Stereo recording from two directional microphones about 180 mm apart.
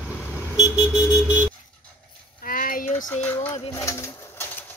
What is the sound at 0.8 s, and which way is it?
Vehicle, 5° right (ahead or behind).